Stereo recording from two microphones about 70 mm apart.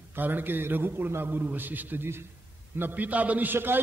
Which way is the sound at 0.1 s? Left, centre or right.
Right.